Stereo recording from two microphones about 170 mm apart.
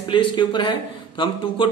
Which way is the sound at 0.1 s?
25° left (ahead or behind).